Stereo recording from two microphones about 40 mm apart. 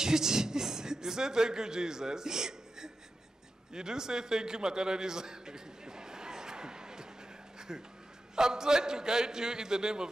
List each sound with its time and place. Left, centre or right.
0.0 s speech: centre
3.7 s a sound: centre
8.4 s a man's voice: centre